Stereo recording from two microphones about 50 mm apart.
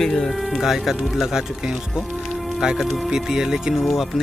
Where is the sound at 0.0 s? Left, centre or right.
Centre.